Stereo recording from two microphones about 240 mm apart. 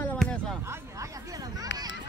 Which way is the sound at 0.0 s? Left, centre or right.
Centre.